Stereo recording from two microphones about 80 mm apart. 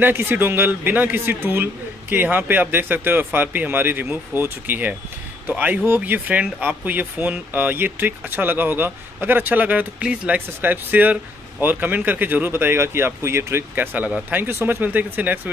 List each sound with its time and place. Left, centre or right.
0.0 s a man's voice: right